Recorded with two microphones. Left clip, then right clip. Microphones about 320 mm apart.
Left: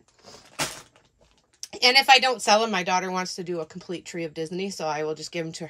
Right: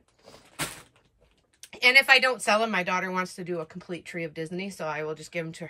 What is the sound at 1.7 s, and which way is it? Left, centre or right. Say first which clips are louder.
Speech: left 2 dB; centre.